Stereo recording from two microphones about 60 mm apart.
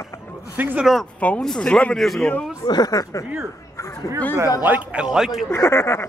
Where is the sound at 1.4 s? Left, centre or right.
Centre.